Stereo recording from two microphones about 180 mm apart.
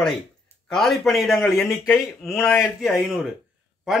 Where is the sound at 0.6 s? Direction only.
Centre (ahead or behind).